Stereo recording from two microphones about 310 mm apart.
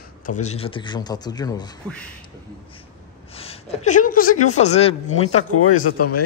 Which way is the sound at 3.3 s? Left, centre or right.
Centre.